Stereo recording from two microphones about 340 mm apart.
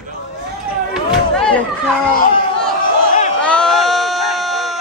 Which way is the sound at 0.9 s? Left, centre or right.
Centre.